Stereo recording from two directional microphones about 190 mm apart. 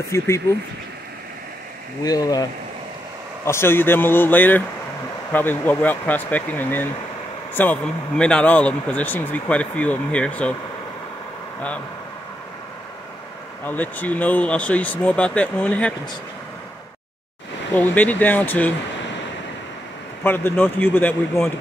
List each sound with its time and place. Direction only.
0.1 s speech: 15° left (ahead or behind)
2.0 s speech: 20° left (ahead or behind)
3.4 s speech: 15° left (ahead or behind)
13.7 s speech: 10° left (ahead or behind)
17.9 s speech: 10° left (ahead or behind)
20.2 s speech: 10° left (ahead or behind)